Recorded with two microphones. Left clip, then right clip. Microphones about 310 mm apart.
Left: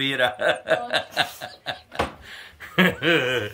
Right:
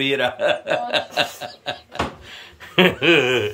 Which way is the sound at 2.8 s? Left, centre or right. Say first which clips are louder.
Right 5 dB; centre.